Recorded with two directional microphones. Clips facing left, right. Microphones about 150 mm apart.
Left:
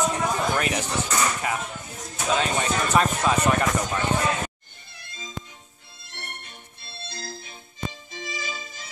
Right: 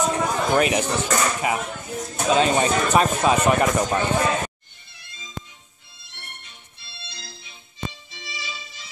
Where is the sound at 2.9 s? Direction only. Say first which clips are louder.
Right 2 dB; 25° right (ahead or behind).